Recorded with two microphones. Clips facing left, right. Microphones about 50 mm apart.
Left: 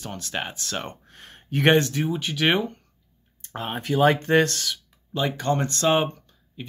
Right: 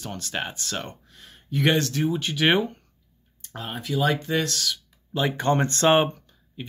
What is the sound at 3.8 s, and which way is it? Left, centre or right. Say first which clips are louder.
Speech: left 4 dB; left.